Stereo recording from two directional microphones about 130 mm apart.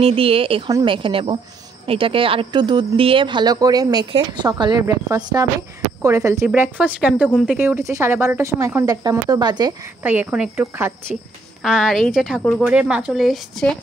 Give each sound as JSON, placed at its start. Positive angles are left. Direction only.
{"t": 0.0, "sound": "a woman's voice", "side_deg": -45}
{"t": 10.0, "sound": "a woman's voice", "side_deg": -10}
{"t": 11.6, "sound": "speech", "side_deg": 0}